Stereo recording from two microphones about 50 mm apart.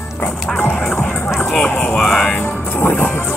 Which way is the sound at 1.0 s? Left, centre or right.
Left.